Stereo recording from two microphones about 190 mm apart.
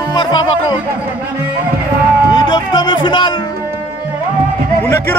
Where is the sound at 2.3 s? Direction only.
20° left (ahead or behind).